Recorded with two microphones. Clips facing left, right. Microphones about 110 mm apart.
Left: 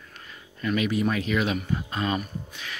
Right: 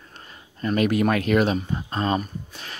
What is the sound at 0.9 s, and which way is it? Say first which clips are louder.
Speech: right 5 dB; 65° right (ahead or behind).